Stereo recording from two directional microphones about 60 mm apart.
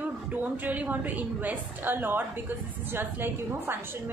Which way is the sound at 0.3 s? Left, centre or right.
Right.